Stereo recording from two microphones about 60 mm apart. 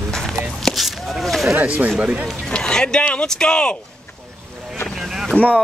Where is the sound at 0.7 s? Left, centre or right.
Centre.